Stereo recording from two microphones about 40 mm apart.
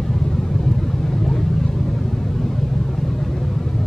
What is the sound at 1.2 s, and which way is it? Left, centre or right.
Vehicle, centre.